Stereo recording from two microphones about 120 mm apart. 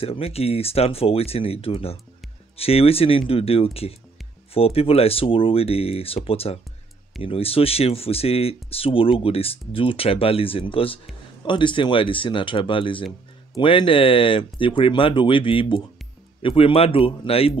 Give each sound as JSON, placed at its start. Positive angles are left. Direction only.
{"t": 0.0, "sound": "speech", "side_deg": 55}